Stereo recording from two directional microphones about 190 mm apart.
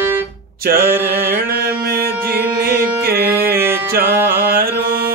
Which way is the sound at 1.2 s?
50° right (ahead or behind).